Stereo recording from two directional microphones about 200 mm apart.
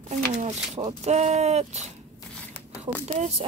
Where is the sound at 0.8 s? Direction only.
30° right (ahead or behind).